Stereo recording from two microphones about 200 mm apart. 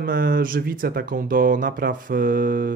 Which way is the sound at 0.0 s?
45° right (ahead or behind).